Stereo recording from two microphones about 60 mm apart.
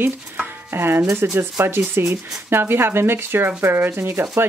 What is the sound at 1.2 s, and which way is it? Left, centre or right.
Speech, right.